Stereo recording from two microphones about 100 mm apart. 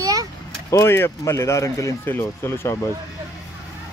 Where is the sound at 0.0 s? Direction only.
40° right (ahead or behind).